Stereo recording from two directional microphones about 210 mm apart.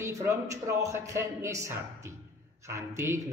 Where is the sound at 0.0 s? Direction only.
15° right (ahead or behind).